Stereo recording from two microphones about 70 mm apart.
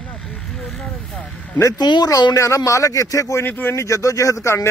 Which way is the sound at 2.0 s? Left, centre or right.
Left.